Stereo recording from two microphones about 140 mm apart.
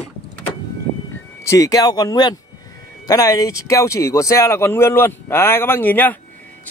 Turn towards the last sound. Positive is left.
turn(degrees=15)  # may be behind; listen again after turning